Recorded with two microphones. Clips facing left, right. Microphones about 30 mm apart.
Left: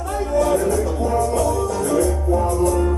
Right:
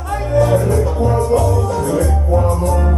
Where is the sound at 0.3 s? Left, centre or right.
Right.